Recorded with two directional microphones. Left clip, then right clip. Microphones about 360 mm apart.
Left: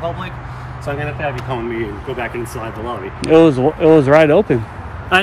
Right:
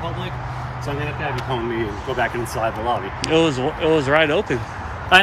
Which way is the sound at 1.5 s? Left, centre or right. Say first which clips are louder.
Left 1 dB; centre.